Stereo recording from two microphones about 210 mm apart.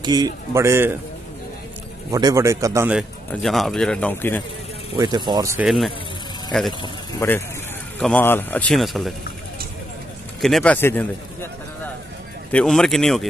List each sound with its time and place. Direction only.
0.0 s a man's voice: 20° right (ahead or behind)
2.0 s a man's voice: 20° right (ahead or behind); by 4.4 s 10° left (ahead or behind)
4.9 s speech: 20° right (ahead or behind)
6.8 s a man's voice: 10° left (ahead or behind)
10.4 s speech: 5° left (ahead or behind)
12.4 s a man's voice: 5° left (ahead or behind)